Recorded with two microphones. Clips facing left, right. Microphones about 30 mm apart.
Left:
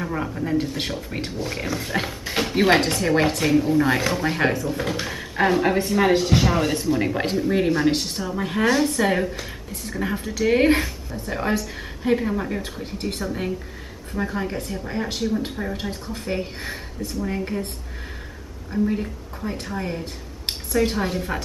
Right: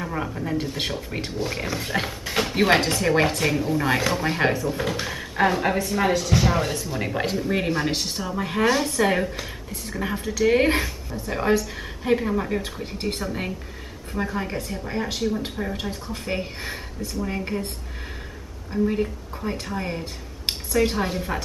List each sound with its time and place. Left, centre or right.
0.0 s a woman's voice: centre
6.1 s speech: left
6.4 s a woman's voice: centre
12.9 s a woman's voice: centre
16.1 s speech: centre
18.7 s a woman's voice: centre